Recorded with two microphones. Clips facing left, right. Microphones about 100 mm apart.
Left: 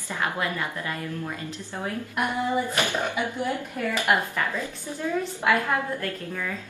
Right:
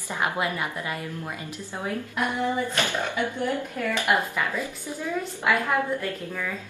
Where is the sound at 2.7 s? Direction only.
15° left (ahead or behind).